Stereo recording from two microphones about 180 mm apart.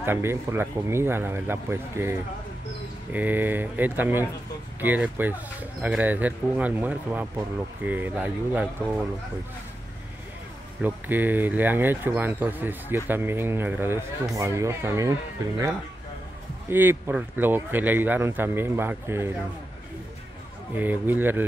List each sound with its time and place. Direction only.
0.0 s speech: 15° right (ahead or behind)
10.8 s speech: 10° right (ahead or behind)
16.6 s speech: 10° right (ahead or behind)
20.7 s speech: 10° right (ahead or behind)